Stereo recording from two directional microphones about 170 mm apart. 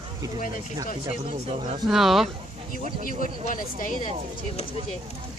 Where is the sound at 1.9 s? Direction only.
Centre (ahead or behind).